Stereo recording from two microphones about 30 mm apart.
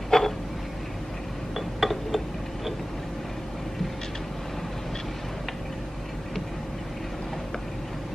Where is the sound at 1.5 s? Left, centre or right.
Centre.